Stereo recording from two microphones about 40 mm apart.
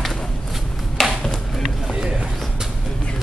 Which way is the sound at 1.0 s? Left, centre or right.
Centre.